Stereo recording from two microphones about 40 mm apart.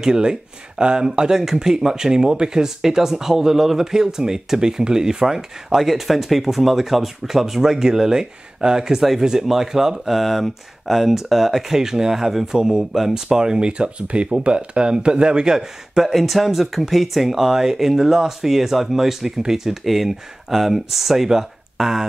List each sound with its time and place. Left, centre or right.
0.0 s speech: centre
16.1 s speech: centre